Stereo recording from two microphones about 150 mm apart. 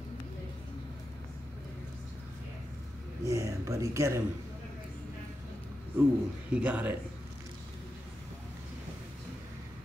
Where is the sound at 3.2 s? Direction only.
20° right (ahead or behind).